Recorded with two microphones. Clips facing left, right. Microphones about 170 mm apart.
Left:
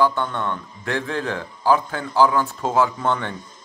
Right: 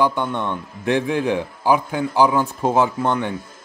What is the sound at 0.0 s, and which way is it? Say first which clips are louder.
Speech: right 1 dB; 15° right (ahead or behind).